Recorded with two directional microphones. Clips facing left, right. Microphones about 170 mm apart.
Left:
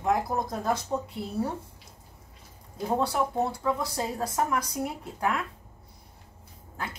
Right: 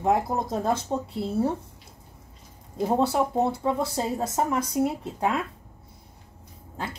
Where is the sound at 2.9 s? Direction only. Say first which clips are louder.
Right 3 dB; 25° right (ahead or behind).